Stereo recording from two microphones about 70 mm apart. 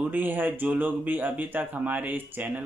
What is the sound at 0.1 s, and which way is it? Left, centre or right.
Speech, right.